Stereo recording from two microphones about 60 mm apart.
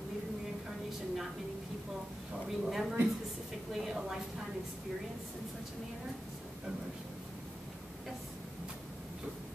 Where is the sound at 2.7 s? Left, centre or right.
Centre.